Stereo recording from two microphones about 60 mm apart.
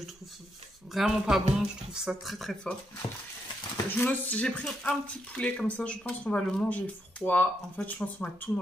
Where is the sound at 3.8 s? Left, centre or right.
Left.